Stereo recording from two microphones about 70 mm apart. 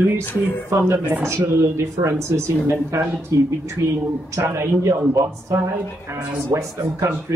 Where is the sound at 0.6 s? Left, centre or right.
Right.